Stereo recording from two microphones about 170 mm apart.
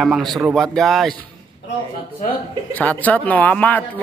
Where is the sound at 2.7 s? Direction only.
10° left (ahead or behind).